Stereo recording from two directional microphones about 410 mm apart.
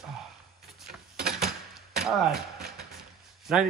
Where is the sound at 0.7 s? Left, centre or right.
Centre.